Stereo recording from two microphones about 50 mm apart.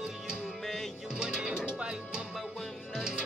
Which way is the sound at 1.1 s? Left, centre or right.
Centre.